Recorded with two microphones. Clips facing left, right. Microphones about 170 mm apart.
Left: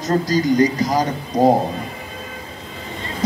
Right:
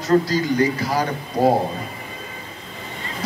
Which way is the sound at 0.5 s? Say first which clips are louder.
Left 3 dB; 20° left (ahead or behind).